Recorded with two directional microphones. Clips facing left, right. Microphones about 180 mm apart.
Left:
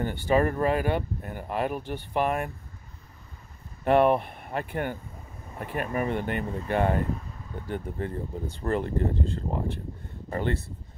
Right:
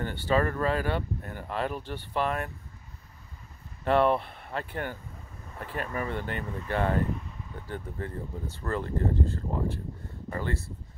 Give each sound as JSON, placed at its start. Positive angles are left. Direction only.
{"t": 0.0, "sound": "speech", "side_deg": 15}
{"t": 3.8, "sound": "speech", "side_deg": 15}